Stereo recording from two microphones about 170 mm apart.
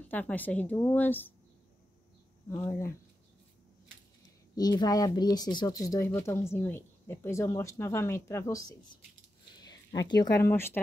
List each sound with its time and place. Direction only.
0.1 s speech: 10° left (ahead or behind)
2.5 s speech: 15° left (ahead or behind)
4.6 s speech: 25° left (ahead or behind)
10.3 s speech: 15° left (ahead or behind)